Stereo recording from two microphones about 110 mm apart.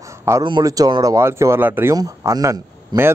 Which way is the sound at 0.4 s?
40° right (ahead or behind).